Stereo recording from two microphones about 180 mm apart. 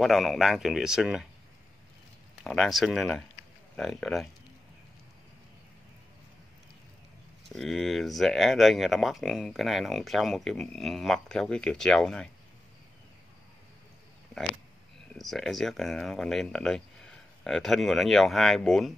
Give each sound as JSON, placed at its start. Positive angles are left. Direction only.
{"t": 0.0, "sound": "speech", "side_deg": 0}
{"t": 2.4, "sound": "speech", "side_deg": 0}
{"t": 7.4, "sound": "speech", "side_deg": 0}
{"t": 15.1, "sound": "speech", "side_deg": 0}